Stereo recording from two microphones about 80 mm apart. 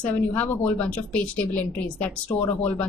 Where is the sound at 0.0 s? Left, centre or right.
Centre.